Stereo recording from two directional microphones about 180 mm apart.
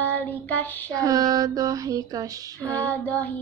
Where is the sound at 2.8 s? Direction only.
10° left (ahead or behind).